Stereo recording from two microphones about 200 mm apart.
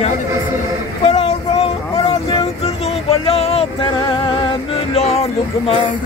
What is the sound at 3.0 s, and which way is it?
Music, 30° left (ahead or behind).